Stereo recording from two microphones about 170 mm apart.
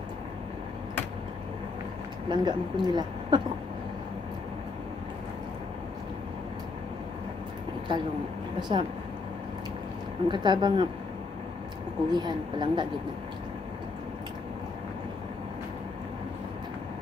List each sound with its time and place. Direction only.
2.2 s a woman's voice: 25° right (ahead or behind)
8.5 s a woman's voice: 25° right (ahead or behind)
10.2 s a woman's voice: 25° right (ahead or behind)
12.1 s a woman's voice: 25° right (ahead or behind)